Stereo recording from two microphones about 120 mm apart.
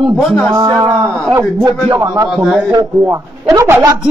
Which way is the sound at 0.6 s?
35° right (ahead or behind).